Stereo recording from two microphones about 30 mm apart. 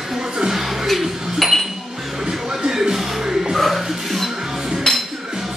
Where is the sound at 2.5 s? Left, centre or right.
Centre.